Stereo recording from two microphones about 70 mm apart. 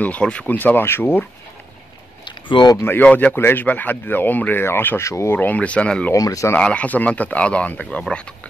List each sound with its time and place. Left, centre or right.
0.0 s speech: centre; by 1.2 s left
2.2 s a sound: left
2.8 s speech: left
3.1 s speech: centre
3.3 s speech: left
5.0 s speech: left
5.3 s speech: left
6.1 s speech: left
6.6 s speech: centre